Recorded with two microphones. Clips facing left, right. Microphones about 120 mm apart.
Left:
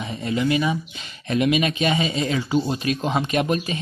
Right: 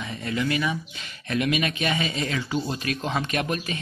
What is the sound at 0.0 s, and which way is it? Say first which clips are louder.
Speech: left 4 dB; 25° left (ahead or behind).